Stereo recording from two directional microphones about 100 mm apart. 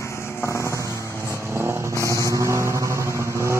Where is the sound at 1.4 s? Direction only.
30° right (ahead or behind).